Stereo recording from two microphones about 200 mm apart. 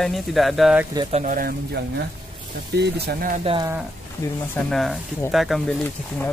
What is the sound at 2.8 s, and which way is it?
Speech, 55° right (ahead or behind).